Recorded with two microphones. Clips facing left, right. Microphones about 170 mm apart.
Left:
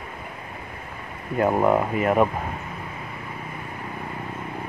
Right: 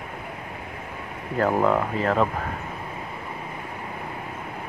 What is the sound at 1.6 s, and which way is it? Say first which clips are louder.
Speech: left 2 dB; 15° left (ahead or behind).